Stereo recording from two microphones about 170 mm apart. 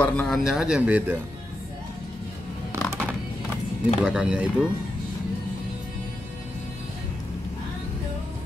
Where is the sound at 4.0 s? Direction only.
5° right (ahead or behind).